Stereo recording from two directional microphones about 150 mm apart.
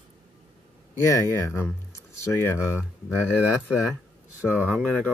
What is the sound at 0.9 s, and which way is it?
Speech, 20° left (ahead or behind).